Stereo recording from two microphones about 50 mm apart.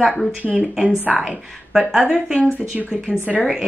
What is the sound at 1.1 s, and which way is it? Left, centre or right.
A woman's voice, centre.